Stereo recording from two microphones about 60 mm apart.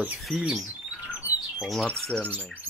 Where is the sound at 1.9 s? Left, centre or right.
Centre.